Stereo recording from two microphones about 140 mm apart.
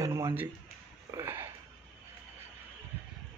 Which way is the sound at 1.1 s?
15° right (ahead or behind).